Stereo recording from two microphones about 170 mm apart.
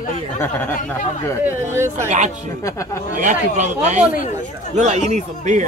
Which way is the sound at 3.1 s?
45° right (ahead or behind).